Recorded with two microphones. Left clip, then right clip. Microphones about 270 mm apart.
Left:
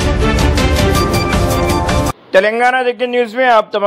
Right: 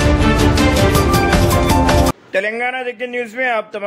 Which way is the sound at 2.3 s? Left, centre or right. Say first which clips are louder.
Left 8 dB; centre.